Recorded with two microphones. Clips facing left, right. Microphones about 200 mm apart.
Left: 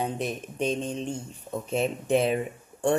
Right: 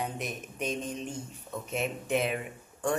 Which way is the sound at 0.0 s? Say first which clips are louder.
Left 6 dB; 30° left (ahead or behind).